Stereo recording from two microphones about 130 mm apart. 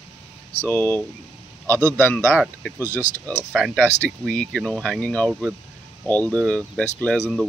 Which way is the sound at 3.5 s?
5° right (ahead or behind).